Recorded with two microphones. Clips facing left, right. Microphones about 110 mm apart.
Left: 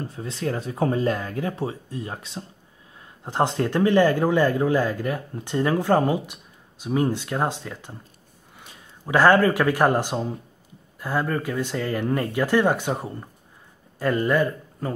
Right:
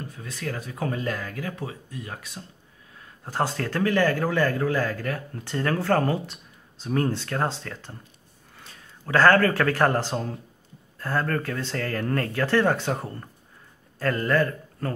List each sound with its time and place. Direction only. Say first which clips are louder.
0.0 s a man's voice: left 5 dB; 30° left (ahead or behind); by 14.9 s 15° left (ahead or behind)